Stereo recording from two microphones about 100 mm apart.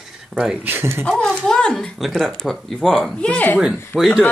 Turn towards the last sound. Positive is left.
turn(degrees=-5)  # may be behind; listen again after turning